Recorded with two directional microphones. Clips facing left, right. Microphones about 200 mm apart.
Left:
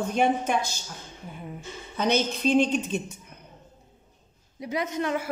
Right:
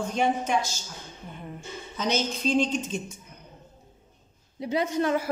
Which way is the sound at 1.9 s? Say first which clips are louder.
Left 3 dB; 60° left (ahead or behind).